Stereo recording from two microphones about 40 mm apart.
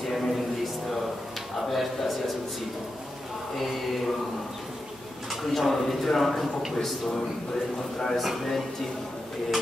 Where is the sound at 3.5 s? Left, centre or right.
Centre.